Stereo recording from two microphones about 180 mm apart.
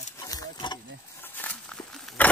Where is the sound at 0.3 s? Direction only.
25° left (ahead or behind).